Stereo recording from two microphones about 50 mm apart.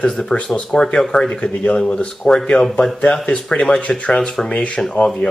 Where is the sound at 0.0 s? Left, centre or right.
Centre.